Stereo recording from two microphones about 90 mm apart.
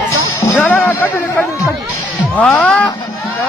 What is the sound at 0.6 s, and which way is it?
Music, 20° left (ahead or behind).